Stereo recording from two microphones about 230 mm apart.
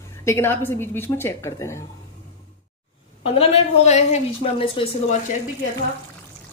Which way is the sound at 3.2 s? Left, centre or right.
Left.